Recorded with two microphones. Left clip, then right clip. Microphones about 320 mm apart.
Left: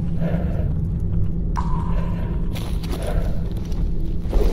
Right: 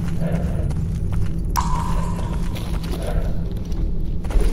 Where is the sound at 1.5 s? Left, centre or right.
Right.